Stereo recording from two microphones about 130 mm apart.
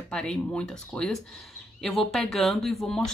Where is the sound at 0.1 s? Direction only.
5° left (ahead or behind).